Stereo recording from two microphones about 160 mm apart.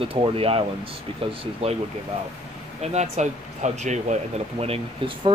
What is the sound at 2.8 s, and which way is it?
Speech, 45° right (ahead or behind).